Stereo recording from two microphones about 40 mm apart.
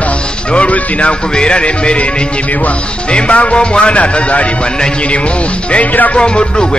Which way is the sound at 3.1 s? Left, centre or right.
Left.